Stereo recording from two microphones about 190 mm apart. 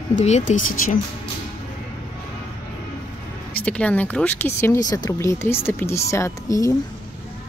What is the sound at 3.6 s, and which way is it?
Speech, 5° left (ahead or behind).